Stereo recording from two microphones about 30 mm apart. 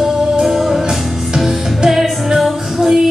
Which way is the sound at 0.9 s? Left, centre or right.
Centre.